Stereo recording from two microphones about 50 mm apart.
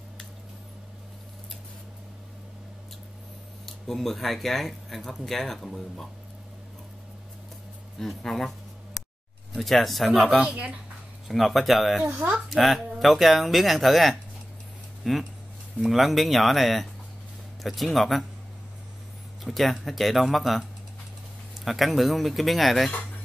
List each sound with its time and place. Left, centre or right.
3.6 s speech: centre
8.0 s speech: centre
9.6 s speech: centre
12.0 s speech: right
12.4 s speech: centre
19.4 s speech: centre
21.6 s speech: centre